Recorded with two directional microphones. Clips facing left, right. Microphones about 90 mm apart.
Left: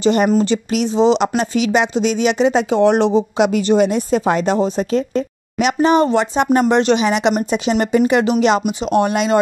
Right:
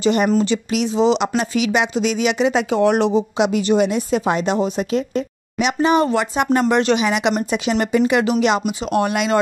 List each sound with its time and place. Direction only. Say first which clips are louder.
0.0 s a woman's voice: left 2 dB; 40° left (ahead or behind)
3.3 s a woman's voice: left 3 dB; 45° left (ahead or behind); by 9.4 s 25° left (ahead or behind)